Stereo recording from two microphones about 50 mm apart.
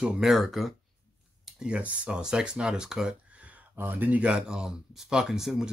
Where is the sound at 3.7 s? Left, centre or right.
Right.